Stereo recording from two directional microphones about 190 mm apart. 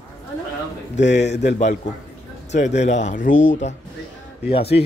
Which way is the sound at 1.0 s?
65° left (ahead or behind).